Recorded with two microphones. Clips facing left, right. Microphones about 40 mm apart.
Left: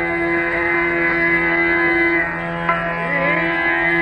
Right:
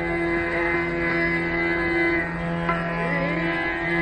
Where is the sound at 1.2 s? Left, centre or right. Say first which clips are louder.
Left 7 dB; left.